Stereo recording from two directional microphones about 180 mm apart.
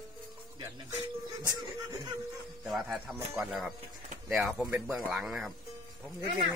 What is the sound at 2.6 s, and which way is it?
A man's voice, centre (ahead or behind).